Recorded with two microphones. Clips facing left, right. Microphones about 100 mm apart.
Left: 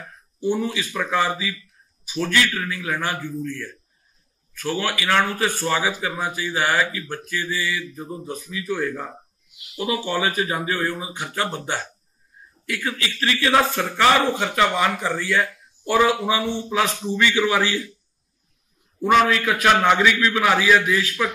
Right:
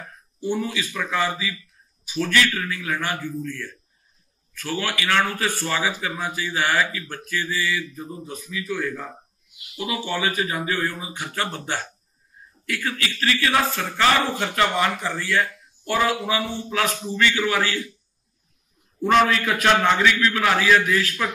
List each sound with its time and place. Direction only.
0.4 s a man's voice: 25° left (ahead or behind)
4.6 s a man's voice: 30° left (ahead or behind)
4.8 s a man's voice: 20° left (ahead or behind)
18.9 s a man's voice: 5° left (ahead or behind)